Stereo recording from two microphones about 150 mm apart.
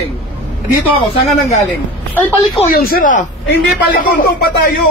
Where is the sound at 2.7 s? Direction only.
75° left (ahead or behind).